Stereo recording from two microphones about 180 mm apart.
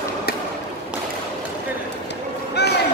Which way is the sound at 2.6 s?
65° left (ahead or behind).